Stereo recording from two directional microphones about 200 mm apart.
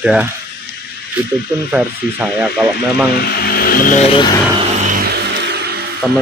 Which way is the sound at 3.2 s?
50° left (ahead or behind).